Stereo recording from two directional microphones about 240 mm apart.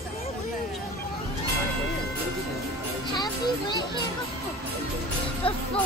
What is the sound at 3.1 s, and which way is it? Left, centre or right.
Children playing, centre.